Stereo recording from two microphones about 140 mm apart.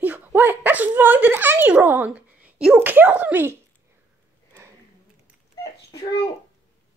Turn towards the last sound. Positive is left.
turn(degrees=25)  # may be behind; listen again after turning